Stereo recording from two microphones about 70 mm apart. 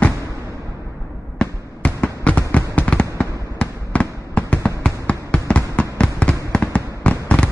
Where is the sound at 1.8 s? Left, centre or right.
Centre.